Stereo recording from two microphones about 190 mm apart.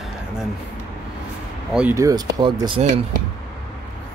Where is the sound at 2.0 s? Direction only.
20° right (ahead or behind).